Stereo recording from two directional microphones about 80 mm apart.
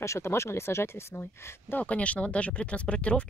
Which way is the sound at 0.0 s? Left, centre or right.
Left.